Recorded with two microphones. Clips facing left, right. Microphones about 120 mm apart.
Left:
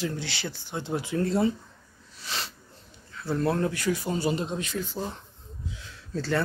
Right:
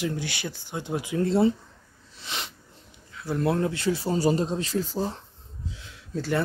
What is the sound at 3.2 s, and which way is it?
Speech, 20° right (ahead or behind).